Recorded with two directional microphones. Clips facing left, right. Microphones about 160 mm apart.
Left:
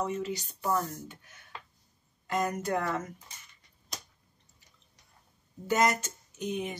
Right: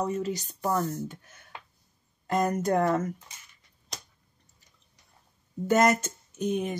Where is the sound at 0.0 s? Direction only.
40° right (ahead or behind).